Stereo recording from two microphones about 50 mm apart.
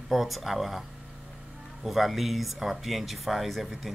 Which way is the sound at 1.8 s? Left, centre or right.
Centre.